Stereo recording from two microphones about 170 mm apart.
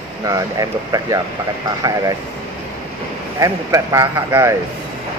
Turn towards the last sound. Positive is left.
turn(degrees=-15)  # may be behind; listen again after turning